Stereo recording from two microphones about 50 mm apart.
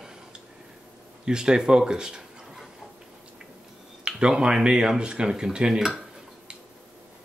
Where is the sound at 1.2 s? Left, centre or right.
Centre.